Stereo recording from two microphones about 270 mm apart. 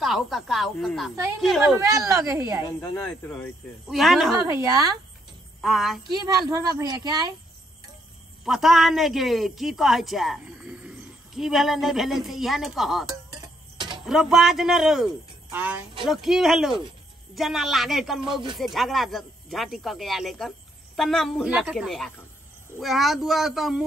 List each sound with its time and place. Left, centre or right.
0.0 s a man's voice: centre
1.8 s speech: centre
2.6 s a man's voice: centre
4.6 s speech: centre
5.6 s a man's voice: centre
6.1 s speech: centre
8.5 s a man's voice: centre
13.3 s a sound: centre
14.0 s a man's voice: centre